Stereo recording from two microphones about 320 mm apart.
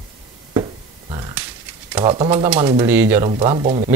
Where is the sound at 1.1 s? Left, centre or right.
Centre.